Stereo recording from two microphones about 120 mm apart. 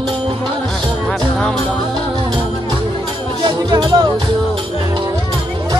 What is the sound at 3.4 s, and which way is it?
Speech, 40° right (ahead or behind).